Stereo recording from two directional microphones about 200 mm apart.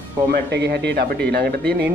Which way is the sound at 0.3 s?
55° right (ahead or behind).